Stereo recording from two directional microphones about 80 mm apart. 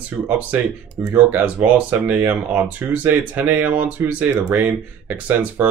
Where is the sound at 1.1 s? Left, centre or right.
Right.